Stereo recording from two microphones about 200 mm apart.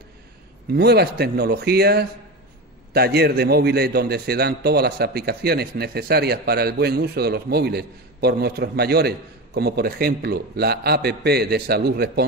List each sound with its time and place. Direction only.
0.7 s a man's voice: 50° right (ahead or behind)